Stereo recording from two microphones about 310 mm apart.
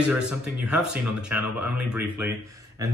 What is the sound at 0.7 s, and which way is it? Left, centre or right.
Speech, centre.